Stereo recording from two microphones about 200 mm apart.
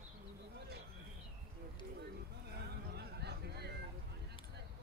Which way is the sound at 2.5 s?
55° right (ahead or behind).